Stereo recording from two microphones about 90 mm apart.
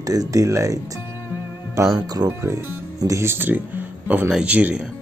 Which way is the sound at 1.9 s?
50° right (ahead or behind).